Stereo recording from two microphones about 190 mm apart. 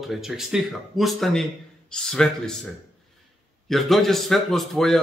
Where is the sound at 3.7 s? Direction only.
Centre (ahead or behind).